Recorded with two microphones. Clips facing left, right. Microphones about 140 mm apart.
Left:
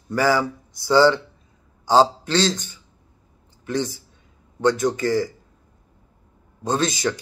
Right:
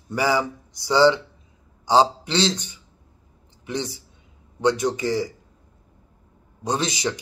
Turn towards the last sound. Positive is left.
turn(degrees=-15)  # may be behind; listen again after turning